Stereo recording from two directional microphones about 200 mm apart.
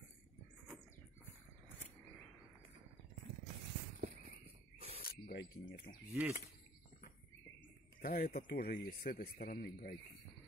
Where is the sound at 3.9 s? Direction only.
35° right (ahead or behind).